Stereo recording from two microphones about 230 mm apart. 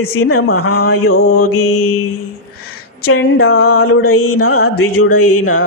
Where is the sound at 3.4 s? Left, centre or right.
Left.